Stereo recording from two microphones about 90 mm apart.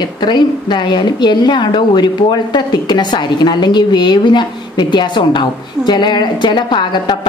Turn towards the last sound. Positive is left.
turn(degrees=60)  # may be behind; listen again after turning